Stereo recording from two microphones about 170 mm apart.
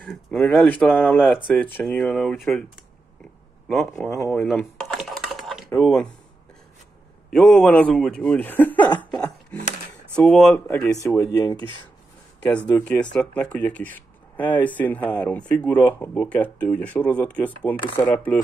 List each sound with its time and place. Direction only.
0.1 s speech: centre (ahead or behind)
3.6 s speech: centre (ahead or behind)
4.5 s dishes: centre (ahead or behind)
5.8 s speech: 5° left (ahead or behind)
7.2 s speech: 5° left (ahead or behind)
9.1 s a sound: 5° left (ahead or behind)
10.1 s speech: 5° left (ahead or behind)
11.0 s speech: 20° left (ahead or behind)
11.5 s speech: 30° right (ahead or behind)
12.7 s speech: 10° left (ahead or behind)